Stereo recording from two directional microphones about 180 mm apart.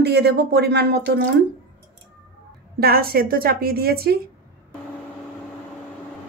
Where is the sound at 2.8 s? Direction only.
60° right (ahead or behind).